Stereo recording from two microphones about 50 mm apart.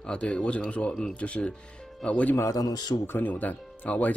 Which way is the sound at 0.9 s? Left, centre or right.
Centre.